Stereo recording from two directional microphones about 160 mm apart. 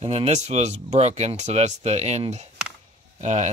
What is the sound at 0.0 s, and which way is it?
Speech, 40° right (ahead or behind).